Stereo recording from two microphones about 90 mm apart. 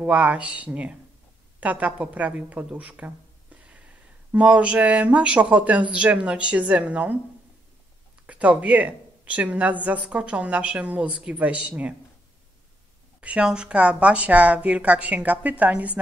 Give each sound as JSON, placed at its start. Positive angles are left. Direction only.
{"t": 0.0, "sound": "a woman's voice", "side_deg": -15}
{"t": 4.3, "sound": "a woman's voice", "side_deg": -15}
{"t": 8.3, "sound": "a woman's voice", "side_deg": -15}
{"t": 13.2, "sound": "a woman's voice", "side_deg": -10}